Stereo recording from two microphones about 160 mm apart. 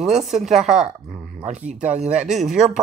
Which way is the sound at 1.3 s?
50° right (ahead or behind).